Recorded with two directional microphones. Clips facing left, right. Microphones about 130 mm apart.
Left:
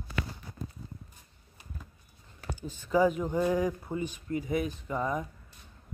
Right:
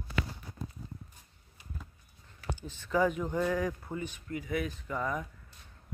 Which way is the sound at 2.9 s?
10° left (ahead or behind).